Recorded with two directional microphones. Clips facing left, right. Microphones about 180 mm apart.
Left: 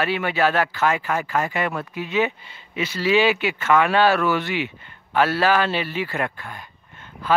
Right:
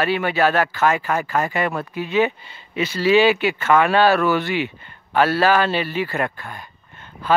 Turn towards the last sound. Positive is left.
turn(degrees=-30)  # may be behind; listen again after turning